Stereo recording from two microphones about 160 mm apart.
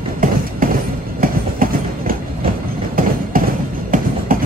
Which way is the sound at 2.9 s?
65° right (ahead or behind).